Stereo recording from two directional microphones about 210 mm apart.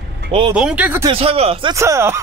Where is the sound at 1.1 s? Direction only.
25° right (ahead or behind).